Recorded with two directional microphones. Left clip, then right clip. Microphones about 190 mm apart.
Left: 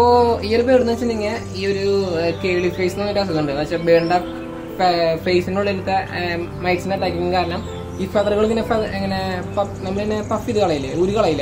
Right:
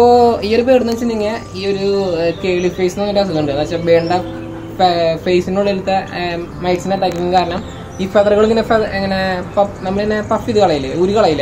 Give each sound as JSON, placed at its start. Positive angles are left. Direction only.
{"t": 0.0, "sound": "a sound", "side_deg": -30}
{"t": 0.7, "sound": "speech", "side_deg": -15}
{"t": 1.3, "sound": "a man's voice", "side_deg": 0}